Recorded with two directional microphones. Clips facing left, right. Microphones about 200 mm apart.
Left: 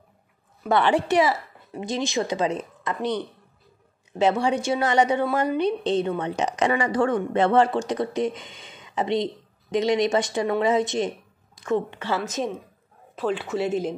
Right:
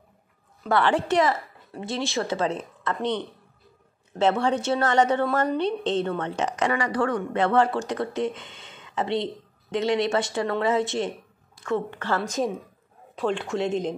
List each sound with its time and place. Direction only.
0.7 s a woman's voice: 20° left (ahead or behind)
12.1 s speech: 5° left (ahead or behind)